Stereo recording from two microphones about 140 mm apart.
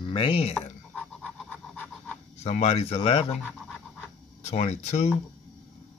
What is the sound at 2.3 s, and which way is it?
Speech, 50° left (ahead or behind).